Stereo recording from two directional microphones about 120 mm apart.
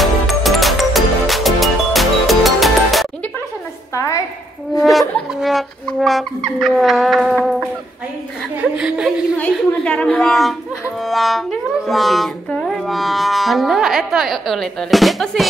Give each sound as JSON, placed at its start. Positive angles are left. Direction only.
{"t": 0.0, "sound": "music", "side_deg": 0}
{"t": 3.9, "sound": "a sound", "side_deg": 25}
{"t": 4.9, "sound": "speech", "side_deg": 0}
{"t": 8.7, "sound": "a woman's voice", "side_deg": -5}
{"t": 9.4, "sound": "a woman's voice", "side_deg": 10}